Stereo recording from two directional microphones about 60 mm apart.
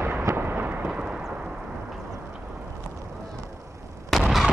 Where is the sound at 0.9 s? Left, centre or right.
Centre.